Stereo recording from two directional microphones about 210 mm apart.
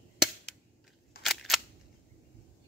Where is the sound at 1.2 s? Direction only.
Centre (ahead or behind).